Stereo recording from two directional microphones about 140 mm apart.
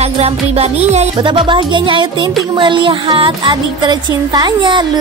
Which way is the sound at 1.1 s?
35° right (ahead or behind).